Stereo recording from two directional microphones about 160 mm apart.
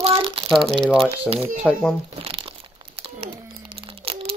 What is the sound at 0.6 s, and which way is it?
Speech, 5° left (ahead or behind).